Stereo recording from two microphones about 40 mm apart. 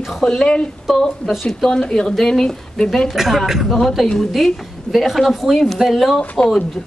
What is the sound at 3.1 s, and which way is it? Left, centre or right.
A woman's voice, centre.